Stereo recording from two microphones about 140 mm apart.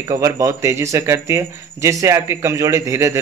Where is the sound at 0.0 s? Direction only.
20° right (ahead or behind).